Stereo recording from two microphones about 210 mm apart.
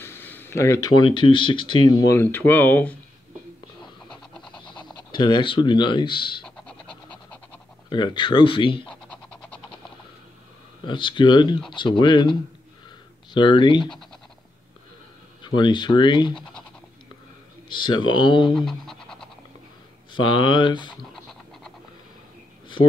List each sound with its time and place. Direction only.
0.0 s speech: 10° left (ahead or behind)
4.1 s a sound: 5° left (ahead or behind)
5.1 s speech: 20° left (ahead or behind)
6.4 s a sound: 5° left (ahead or behind)
7.9 s speech: 20° left (ahead or behind)
8.8 s a sound: 5° left (ahead or behind)
10.9 s speech: 20° left (ahead or behind)
15.4 s speech: 20° left (ahead or behind)
17.6 s speech: 20° left (ahead or behind)
18.5 s scratch: centre (ahead or behind)
20.1 s speech: 25° left (ahead or behind)
21.0 s scratch: centre (ahead or behind)